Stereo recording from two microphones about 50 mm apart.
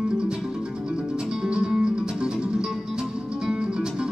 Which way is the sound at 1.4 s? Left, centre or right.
Centre.